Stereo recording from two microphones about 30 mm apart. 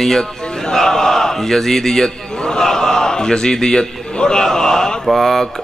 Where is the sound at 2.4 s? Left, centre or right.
Left.